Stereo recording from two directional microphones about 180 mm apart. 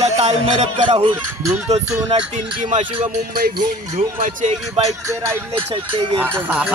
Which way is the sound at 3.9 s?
40° right (ahead or behind).